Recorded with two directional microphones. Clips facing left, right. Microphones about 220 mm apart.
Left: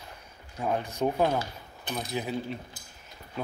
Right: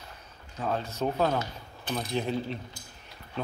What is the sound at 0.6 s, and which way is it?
Speech, 15° left (ahead or behind).